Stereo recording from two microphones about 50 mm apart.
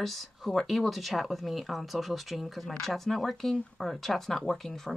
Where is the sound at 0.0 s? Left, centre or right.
Centre.